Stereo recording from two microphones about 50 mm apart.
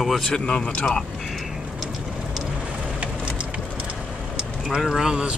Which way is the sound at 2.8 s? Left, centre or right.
Right.